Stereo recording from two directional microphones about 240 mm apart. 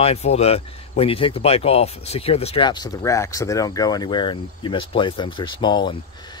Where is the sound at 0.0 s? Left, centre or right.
Left.